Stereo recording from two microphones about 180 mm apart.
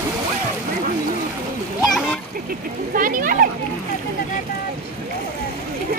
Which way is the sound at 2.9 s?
50° right (ahead or behind).